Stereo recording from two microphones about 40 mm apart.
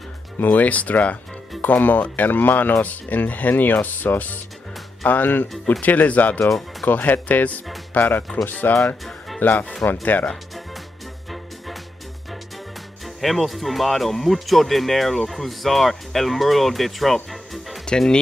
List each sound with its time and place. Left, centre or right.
0.4 s speech: left
5.7 s speech: left
11.2 s music: centre
13.0 s speech: centre
17.8 s speech: centre